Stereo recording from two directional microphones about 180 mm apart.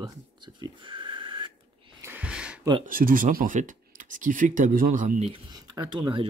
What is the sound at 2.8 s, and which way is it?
Speech, 50° right (ahead or behind).